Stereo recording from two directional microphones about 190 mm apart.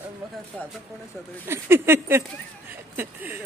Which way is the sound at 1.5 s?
10° right (ahead or behind).